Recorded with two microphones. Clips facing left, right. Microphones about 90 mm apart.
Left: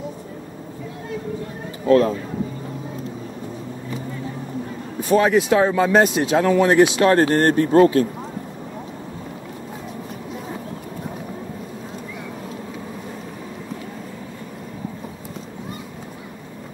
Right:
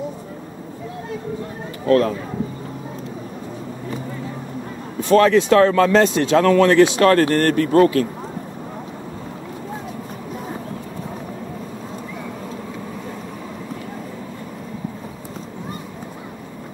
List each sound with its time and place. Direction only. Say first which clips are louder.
1.9 s a man's voice: left 1 dB; 25° left (ahead or behind)
5.1 s a man's voice: right 3 dB; 15° left (ahead or behind)